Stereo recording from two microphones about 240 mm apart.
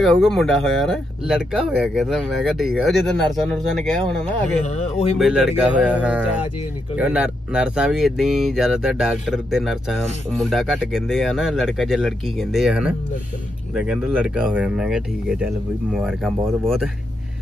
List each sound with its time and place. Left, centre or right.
0.0 s speech: centre
4.6 s speech: left
5.2 s speech: centre